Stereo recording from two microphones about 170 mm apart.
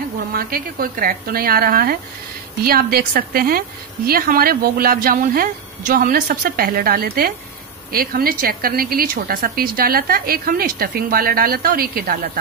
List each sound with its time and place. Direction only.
0.3 s a woman's voice: 60° right (ahead or behind)